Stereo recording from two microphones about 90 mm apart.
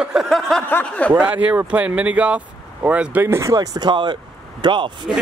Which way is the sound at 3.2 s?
30° right (ahead or behind).